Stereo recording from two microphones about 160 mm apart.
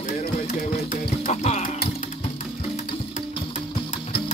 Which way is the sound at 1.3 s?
45° left (ahead or behind).